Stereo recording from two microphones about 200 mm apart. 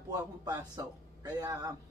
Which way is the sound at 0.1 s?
20° right (ahead or behind).